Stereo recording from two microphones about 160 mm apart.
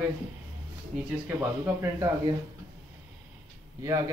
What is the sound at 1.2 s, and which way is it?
Speech, 10° right (ahead or behind).